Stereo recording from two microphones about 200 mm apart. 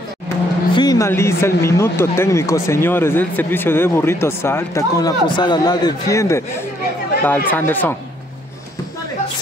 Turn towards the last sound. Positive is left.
turn(degrees=10)  # may be behind; listen again after turning